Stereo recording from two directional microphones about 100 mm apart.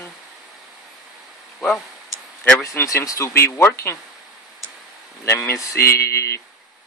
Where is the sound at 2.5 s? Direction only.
30° left (ahead or behind).